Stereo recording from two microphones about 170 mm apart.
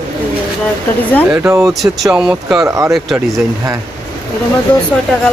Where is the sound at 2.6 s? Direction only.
20° right (ahead or behind).